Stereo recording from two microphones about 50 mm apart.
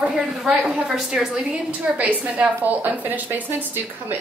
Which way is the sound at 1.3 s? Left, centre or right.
Right.